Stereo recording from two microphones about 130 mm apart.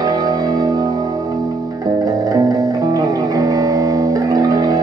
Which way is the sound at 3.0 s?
25° right (ahead or behind).